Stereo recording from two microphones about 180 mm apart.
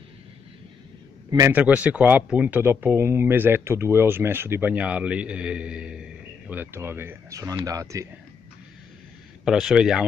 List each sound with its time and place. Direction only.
1.3 s a man's voice: 15° right (ahead or behind)
9.4 s speech: 5° right (ahead or behind)